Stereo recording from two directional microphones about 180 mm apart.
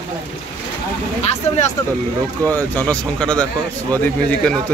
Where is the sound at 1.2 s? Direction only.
35° left (ahead or behind).